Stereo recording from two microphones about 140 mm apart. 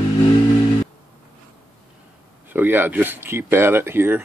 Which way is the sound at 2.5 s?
15° right (ahead or behind).